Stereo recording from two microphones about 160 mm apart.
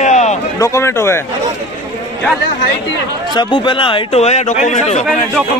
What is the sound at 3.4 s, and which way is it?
A man's voice, 25° left (ahead or behind).